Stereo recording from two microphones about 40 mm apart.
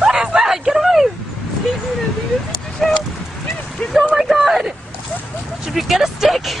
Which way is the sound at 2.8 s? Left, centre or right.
Centre.